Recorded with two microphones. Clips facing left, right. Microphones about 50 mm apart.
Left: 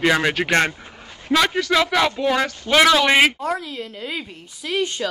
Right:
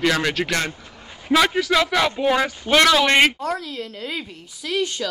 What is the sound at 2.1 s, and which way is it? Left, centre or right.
Speech, centre.